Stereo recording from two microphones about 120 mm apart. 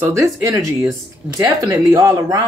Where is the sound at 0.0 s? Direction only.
30° right (ahead or behind).